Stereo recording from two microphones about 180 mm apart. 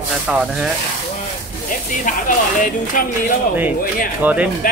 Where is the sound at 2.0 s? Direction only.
45° left (ahead or behind).